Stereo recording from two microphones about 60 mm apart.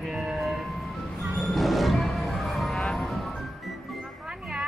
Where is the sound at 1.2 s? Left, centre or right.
Centre.